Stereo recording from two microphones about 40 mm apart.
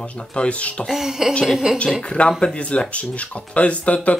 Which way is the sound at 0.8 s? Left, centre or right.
Centre.